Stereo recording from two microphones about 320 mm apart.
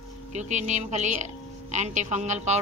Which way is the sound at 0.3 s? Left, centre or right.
Right.